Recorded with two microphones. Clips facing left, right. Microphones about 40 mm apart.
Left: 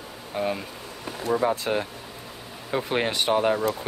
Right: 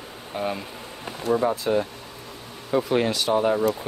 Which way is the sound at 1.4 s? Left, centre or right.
Left.